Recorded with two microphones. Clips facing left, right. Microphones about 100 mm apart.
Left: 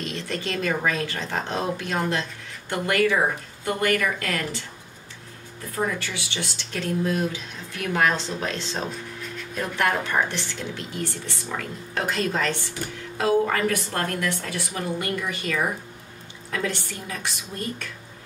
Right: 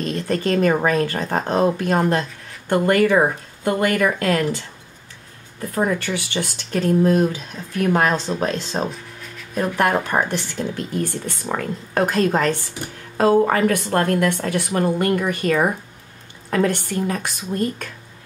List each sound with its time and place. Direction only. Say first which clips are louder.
0.0 s speech: right 8 dB; 45° right (ahead or behind)
5.8 s speech: right 6 dB; 55° right (ahead or behind)